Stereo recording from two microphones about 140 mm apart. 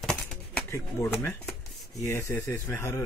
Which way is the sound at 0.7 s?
15° left (ahead or behind).